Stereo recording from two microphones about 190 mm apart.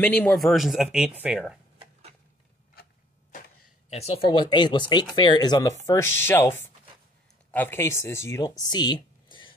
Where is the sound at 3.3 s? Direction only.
40° left (ahead or behind).